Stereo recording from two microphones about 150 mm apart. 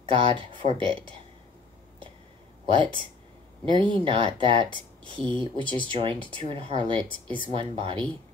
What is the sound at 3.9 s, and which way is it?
Speech, 35° right (ahead or behind).